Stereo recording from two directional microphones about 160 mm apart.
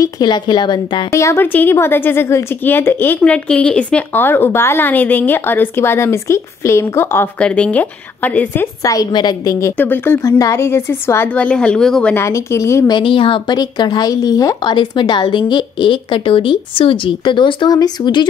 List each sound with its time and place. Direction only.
0.0 s speech: 25° left (ahead or behind)
1.1 s a woman's voice: 15° left (ahead or behind)
8.8 s a woman's voice: 25° left (ahead or behind)
12.9 s speech: 35° left (ahead or behind)